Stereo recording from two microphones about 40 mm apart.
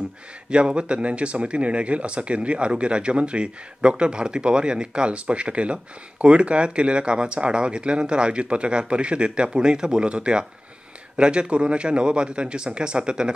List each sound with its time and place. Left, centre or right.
0.5 s speech: right